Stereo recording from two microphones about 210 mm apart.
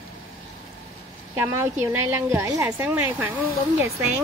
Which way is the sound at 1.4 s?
10° right (ahead or behind).